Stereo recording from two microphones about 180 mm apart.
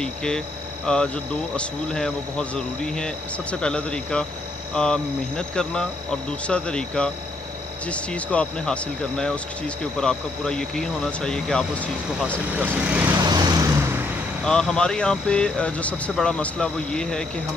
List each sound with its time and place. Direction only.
0.0 s speech: 5° left (ahead or behind)
12.5 s speech: 10° right (ahead or behind)
13.2 s vehicle: 25° right (ahead or behind)
14.4 s speech: 5° left (ahead or behind)